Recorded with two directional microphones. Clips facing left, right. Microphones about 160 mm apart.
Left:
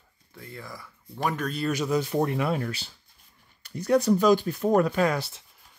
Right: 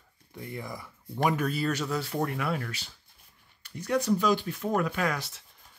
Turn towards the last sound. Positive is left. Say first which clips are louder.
# left 6 dB
turn(degrees=30)  # may be behind; listen again after turning